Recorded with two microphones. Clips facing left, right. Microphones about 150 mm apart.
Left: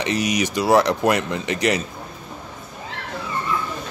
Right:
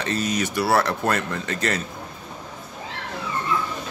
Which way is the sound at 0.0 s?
15° left (ahead or behind).